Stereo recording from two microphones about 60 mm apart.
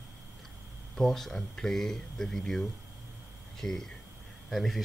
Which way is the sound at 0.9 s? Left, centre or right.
Centre.